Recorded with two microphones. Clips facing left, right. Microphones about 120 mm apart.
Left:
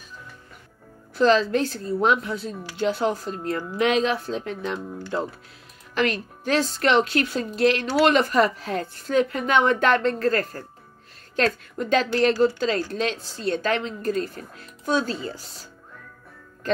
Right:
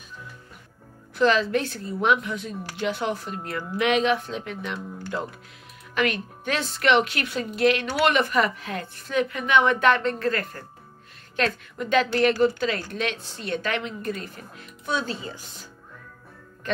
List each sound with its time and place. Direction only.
1.1 s speech: 30° left (ahead or behind)
5.9 s speech: 35° left (ahead or behind)